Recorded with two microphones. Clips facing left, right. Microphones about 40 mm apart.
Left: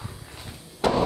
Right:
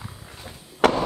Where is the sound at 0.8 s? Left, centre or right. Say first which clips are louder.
Right 4 dB; right.